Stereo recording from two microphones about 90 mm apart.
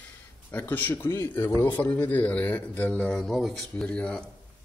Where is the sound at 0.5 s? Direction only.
20° left (ahead or behind).